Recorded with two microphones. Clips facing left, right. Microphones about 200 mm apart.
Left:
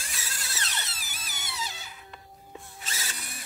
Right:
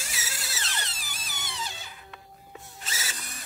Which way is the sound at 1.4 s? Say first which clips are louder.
Even; 5° left (ahead or behind).